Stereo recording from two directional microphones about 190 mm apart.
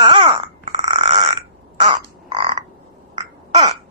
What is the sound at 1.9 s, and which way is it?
Crow, 35° right (ahead or behind).